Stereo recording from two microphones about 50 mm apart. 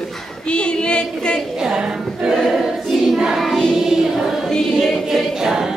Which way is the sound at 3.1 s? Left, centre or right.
Centre.